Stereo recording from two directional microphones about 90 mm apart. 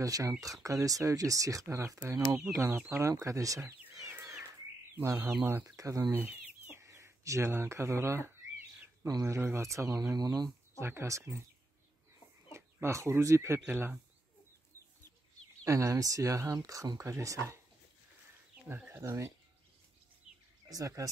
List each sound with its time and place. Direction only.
0.0 s speech: 40° right (ahead or behind)
4.9 s speech: 30° right (ahead or behind)
5.8 s speech: 40° right (ahead or behind)
6.1 s chicken: 25° right (ahead or behind)
9.2 s speech: 25° right (ahead or behind); by 10.5 s 50° right (ahead or behind)
10.7 s speech: 30° right (ahead or behind)
12.5 s speech: 30° right (ahead or behind)
15.6 s speech: 35° right (ahead or behind)
18.9 s speech: 30° right (ahead or behind)
20.2 s bird: 5° right (ahead or behind)
20.6 s speech: 40° right (ahead or behind)